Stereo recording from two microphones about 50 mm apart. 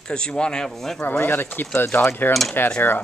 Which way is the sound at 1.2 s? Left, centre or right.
Left.